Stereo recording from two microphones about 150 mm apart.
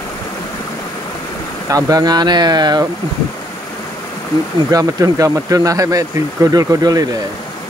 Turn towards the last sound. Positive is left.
turn(degrees=-25)  # may be behind; listen again after turning